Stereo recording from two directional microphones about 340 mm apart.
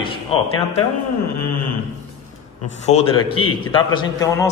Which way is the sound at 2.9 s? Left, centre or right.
Centre.